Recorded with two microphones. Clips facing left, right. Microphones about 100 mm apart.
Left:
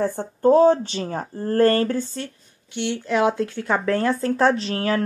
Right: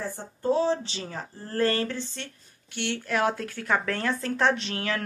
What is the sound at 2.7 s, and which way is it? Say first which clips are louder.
Speech: left 6 dB; 20° left (ahead or behind).